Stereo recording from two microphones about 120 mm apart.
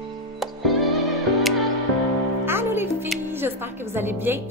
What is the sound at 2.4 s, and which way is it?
Music, 20° right (ahead or behind).